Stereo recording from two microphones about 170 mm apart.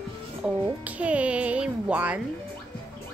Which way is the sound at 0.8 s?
10° right (ahead or behind).